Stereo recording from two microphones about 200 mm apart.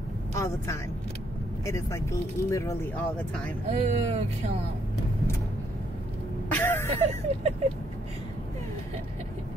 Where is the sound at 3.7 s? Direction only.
35° right (ahead or behind).